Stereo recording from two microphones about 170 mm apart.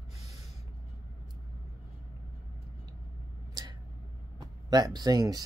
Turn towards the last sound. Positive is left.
turn(degrees=-25)  # may be behind; listen again after turning